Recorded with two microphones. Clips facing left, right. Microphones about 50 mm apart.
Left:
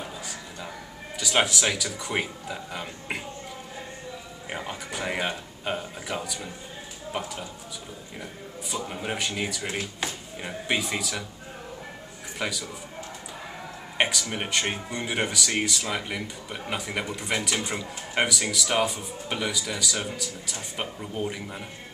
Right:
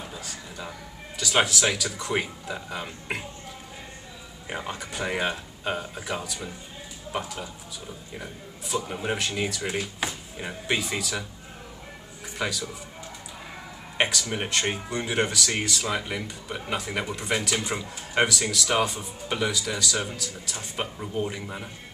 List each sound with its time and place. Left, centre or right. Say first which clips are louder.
1.1 s speech: right 1 dB; centre
4.5 s speech: right 1 dB; centre
9.6 s speech: right 2 dB; centre
9.9 s speech: right 1 dB; centre
12.4 s speech: right 1 dB; centre
13.9 s speech: even; centre